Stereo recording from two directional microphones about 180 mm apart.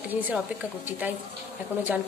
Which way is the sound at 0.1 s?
10° right (ahead or behind).